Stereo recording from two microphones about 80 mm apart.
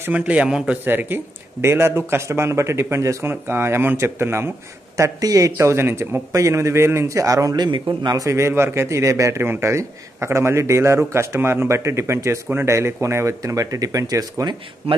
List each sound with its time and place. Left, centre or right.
0.1 s a man's voice: centre
0.8 s a man's voice: right
4.9 s a man's voice: right
7.5 s a man's voice: right
8.3 s a man's voice: right
14.4 s a man's voice: right